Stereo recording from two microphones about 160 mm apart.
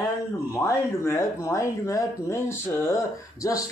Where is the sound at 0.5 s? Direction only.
15° left (ahead or behind).